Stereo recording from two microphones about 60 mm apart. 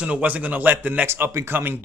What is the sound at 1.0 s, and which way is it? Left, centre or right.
Speech, right.